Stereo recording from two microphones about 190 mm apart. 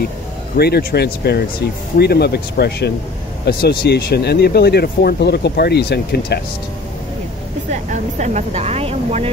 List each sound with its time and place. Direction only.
0.6 s speech: 60° left (ahead or behind)
7.7 s speech: 40° right (ahead or behind)